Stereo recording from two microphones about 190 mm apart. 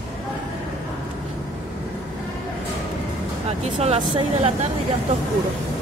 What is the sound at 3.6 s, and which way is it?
A woman's voice, 35° right (ahead or behind).